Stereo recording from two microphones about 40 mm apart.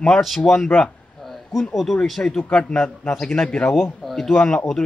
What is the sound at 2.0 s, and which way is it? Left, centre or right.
Speech, centre.